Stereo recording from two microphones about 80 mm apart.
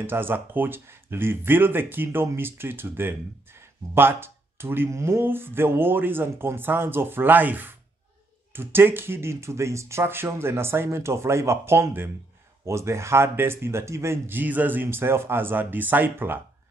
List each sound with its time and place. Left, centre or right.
0.0 s speech: right